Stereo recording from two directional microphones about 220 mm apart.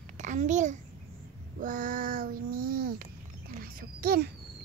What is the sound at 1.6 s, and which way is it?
Child singing, 40° right (ahead or behind).